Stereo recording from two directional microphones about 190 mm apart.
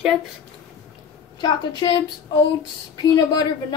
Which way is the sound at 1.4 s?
20° left (ahead or behind).